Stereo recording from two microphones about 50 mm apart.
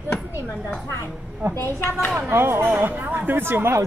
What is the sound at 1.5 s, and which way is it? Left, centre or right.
Speech, left.